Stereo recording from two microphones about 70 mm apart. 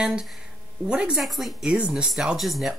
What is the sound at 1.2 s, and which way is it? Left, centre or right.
Speech, centre.